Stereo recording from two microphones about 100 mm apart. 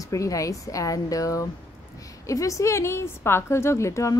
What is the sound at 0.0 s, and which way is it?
A woman's voice, 35° left (ahead or behind).